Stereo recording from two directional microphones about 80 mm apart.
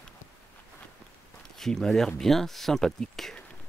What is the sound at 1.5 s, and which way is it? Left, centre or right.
Speech, centre.